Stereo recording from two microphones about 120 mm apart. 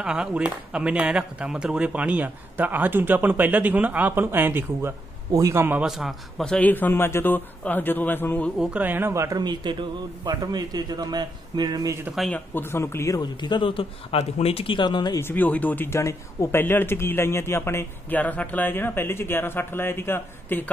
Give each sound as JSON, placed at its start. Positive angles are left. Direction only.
{"t": 0.0, "sound": "speech", "side_deg": -5}
{"t": 5.8, "sound": "a man's voice", "side_deg": -5}
{"t": 6.7, "sound": "speech", "side_deg": 15}
{"t": 8.5, "sound": "speech", "side_deg": -15}
{"t": 12.5, "sound": "speech", "side_deg": 20}
{"t": 13.2, "sound": "speech", "side_deg": 40}
{"t": 15.1, "sound": "speech", "side_deg": 15}